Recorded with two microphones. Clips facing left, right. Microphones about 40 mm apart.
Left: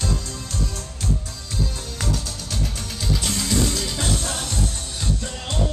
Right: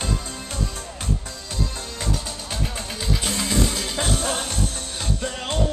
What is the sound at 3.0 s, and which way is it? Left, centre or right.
Music, centre.